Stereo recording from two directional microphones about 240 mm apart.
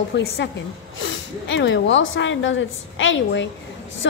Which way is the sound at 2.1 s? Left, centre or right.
Left.